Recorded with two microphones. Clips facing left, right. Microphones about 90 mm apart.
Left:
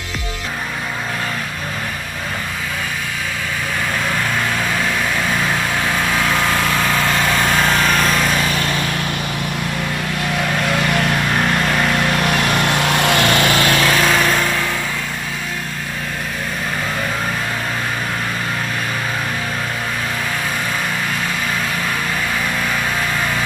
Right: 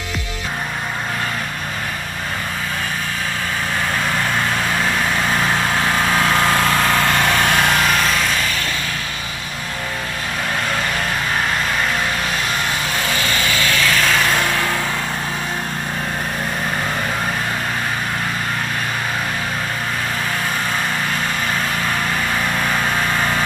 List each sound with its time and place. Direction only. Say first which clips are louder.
5.3 s vehicle: right 1 dB; 20° right (ahead or behind)
7.7 s lawn mower: left 1 dB; centre (ahead or behind)
12.2 s vehicle: left 5 dB; 60° left (ahead or behind)
13.7 s vehicle: left 3 dB; 35° left (ahead or behind)
14.4 s vehicle: even; 20° right (ahead or behind)